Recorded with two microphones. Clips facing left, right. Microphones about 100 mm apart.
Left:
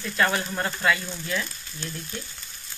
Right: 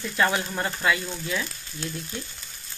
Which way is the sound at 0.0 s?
10° right (ahead or behind).